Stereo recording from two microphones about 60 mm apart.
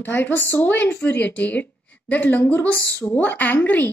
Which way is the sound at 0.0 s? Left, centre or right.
Left.